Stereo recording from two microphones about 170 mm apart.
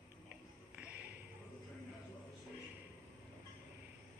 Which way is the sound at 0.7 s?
10° right (ahead or behind).